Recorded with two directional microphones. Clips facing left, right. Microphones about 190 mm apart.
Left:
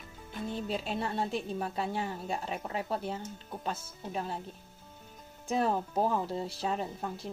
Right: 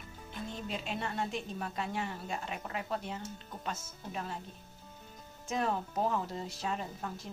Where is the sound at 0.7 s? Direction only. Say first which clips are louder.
Left 2 dB; 35° left (ahead or behind).